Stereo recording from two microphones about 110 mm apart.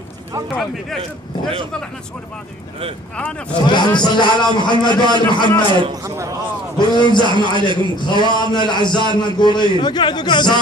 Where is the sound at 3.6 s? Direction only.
40° left (ahead or behind).